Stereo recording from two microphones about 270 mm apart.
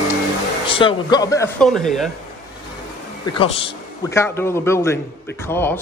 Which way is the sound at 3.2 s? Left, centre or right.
Centre.